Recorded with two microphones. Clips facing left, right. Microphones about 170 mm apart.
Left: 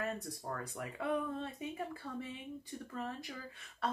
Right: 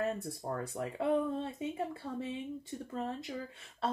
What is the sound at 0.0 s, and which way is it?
Speech, 25° right (ahead or behind).